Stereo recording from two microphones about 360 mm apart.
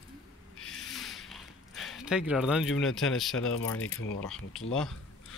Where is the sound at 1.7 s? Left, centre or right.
Centre.